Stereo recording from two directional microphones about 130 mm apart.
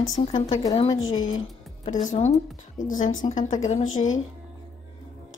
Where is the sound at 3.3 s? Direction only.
70° left (ahead or behind).